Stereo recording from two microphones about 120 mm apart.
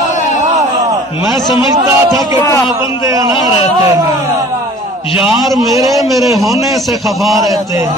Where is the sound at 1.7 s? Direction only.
30° right (ahead or behind).